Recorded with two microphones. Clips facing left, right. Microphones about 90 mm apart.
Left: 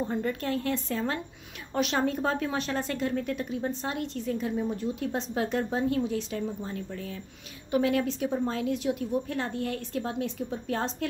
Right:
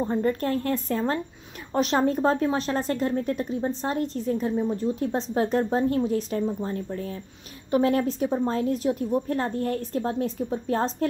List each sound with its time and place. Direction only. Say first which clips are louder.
0.0 s speech: right 5 dB; 40° right (ahead or behind)